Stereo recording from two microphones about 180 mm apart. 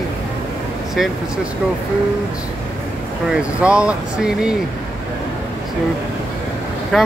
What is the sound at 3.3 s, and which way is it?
Speech, 5° right (ahead or behind).